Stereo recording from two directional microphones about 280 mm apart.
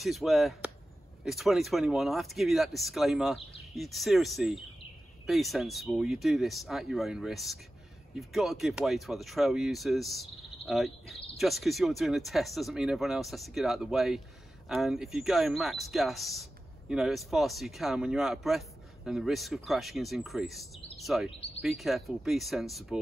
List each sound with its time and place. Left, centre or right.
0.0 s speech: centre